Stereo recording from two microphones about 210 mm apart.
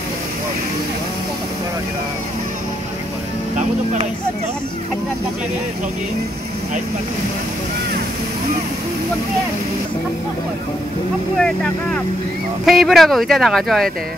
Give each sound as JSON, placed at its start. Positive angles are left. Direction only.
{"t": 3.5, "sound": "speech", "side_deg": -35}
{"t": 11.3, "sound": "speech", "side_deg": 5}